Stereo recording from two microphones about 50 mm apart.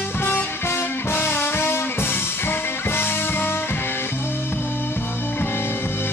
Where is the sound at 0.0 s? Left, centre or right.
Left.